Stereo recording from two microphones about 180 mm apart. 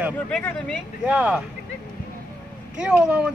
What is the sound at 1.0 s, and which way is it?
Speech, 5° right (ahead or behind).